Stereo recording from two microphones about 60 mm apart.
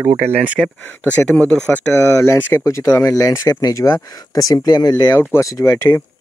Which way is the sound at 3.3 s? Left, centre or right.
Left.